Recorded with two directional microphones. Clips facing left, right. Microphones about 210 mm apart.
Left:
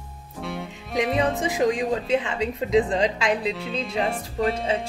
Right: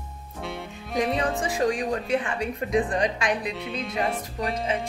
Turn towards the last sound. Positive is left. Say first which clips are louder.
# left 2 dB
turn(degrees=25)  # may be behind; listen again after turning